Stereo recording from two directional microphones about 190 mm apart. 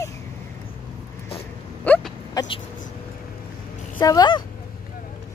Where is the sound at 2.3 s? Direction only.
25° left (ahead or behind).